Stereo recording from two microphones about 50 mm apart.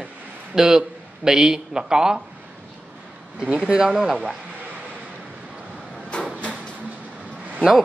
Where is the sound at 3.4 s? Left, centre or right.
Centre.